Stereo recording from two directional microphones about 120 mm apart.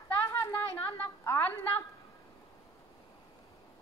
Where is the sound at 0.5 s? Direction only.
15° left (ahead or behind).